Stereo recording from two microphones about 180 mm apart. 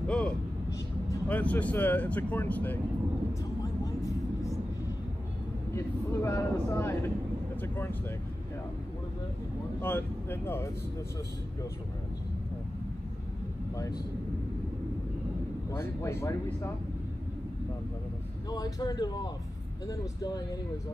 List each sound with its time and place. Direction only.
0.0 s vehicle: 5° left (ahead or behind)
1.1 s speech: 10° left (ahead or behind)
3.6 s vehicle: 20° left (ahead or behind)
5.8 s speech: 15° left (ahead or behind)
9.8 s speech: 10° left (ahead or behind)
15.7 s speech: 15° left (ahead or behind)
18.5 s speech: 20° left (ahead or behind)